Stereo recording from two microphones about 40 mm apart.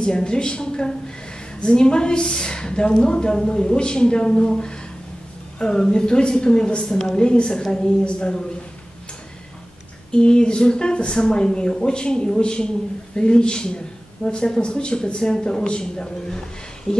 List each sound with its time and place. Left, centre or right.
0.0 s speech: left
7.6 s a woman's voice: centre
8.0 s speech: left
10.1 s speech: left